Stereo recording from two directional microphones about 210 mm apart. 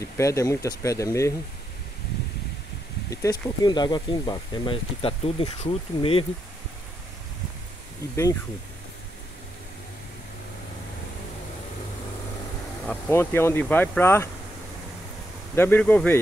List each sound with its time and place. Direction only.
0.0 s speech: 15° left (ahead or behind)
3.1 s speech: 15° left (ahead or behind)
12.8 s speech: 10° left (ahead or behind)
15.5 s speech: 10° left (ahead or behind)